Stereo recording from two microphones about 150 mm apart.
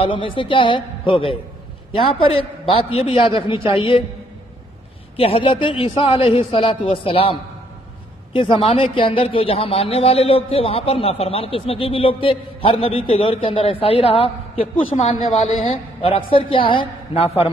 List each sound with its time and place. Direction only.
0.0 s a man's voice: 35° left (ahead or behind)
5.1 s a man's voice: 35° left (ahead or behind)